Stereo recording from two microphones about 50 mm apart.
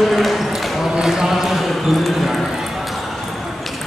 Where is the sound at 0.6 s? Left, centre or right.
Centre.